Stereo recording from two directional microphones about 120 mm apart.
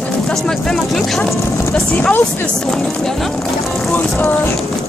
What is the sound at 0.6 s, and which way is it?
Speech, 5° left (ahead or behind).